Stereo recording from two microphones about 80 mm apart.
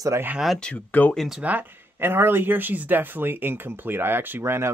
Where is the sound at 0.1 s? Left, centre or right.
Right.